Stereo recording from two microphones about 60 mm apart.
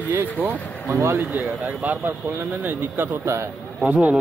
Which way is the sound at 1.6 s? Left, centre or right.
Right.